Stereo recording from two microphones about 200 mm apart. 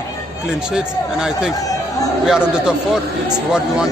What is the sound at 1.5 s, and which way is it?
Chatter, 15° left (ahead or behind).